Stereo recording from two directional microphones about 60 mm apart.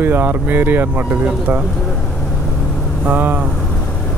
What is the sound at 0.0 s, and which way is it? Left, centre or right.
Speech, right.